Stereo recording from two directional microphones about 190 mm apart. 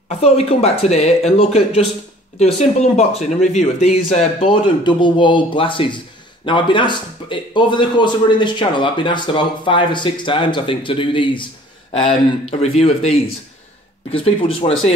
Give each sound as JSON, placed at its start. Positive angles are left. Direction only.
{"t": 0.2, "sound": "speech", "side_deg": 35}